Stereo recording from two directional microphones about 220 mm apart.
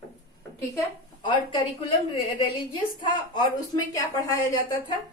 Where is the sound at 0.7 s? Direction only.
20° left (ahead or behind).